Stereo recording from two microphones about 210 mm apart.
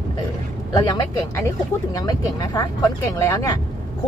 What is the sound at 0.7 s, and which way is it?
Speech, 15° left (ahead or behind).